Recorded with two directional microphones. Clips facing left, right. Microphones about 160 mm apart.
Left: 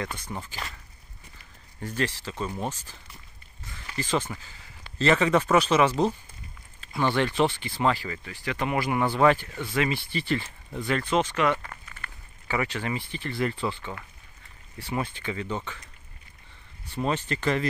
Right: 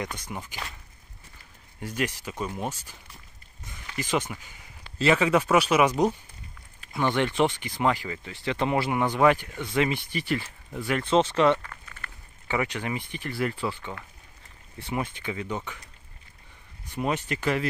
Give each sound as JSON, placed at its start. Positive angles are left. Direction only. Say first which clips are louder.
{"t": 0.2, "sound": "speech", "louder": "left 1 dB", "side_deg": -10}
{"t": 1.8, "sound": "speech", "louder": "even", "side_deg": -10}
{"t": 11.0, "sound": "speech", "louder": "right 4 dB", "side_deg": -25}
{"t": 11.6, "sound": "a sound", "louder": "left 1 dB", "side_deg": 20}
{"t": 12.4, "sound": "speech", "louder": "even", "side_deg": -20}
{"t": 16.8, "sound": "speech", "louder": "even", "side_deg": -10}